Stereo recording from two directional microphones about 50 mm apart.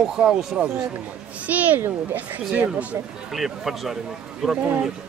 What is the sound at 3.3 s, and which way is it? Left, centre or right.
Speech, centre.